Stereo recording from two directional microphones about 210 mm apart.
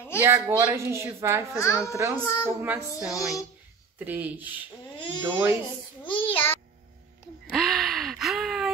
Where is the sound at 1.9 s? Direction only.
15° right (ahead or behind).